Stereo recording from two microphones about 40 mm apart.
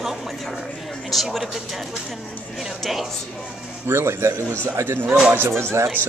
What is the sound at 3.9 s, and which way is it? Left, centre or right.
Speech, right.